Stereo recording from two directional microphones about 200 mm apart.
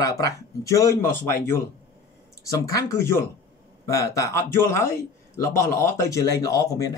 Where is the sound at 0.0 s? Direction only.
15° left (ahead or behind).